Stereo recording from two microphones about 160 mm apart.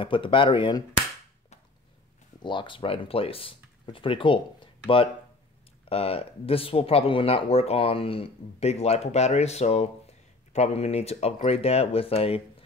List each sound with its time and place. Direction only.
0.0 s speech: 30° left (ahead or behind)
2.4 s speech: 30° left (ahead or behind)
5.9 s speech: 35° left (ahead or behind)